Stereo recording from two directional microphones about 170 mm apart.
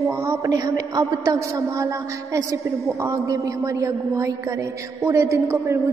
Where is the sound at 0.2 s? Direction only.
20° right (ahead or behind).